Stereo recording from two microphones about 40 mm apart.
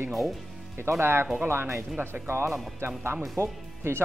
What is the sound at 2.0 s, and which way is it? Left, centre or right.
Speech, right.